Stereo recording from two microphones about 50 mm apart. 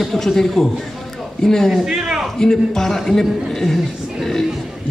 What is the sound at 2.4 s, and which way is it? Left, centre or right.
Speech, centre.